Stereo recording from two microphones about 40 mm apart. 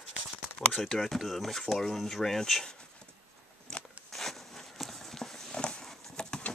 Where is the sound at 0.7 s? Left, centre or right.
Centre.